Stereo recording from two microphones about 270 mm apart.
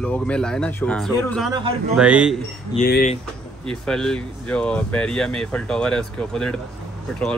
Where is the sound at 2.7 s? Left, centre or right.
Left.